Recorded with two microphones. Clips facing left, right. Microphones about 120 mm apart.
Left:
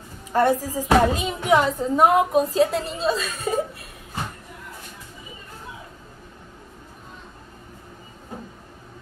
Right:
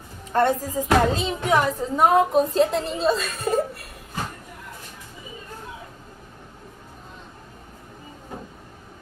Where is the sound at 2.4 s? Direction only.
Centre (ahead or behind).